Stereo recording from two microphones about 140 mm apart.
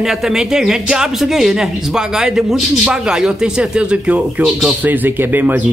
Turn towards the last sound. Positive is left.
turn(degrees=-15)  # may be behind; listen again after turning